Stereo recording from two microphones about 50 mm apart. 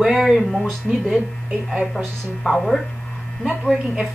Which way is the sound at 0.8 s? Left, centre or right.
Centre.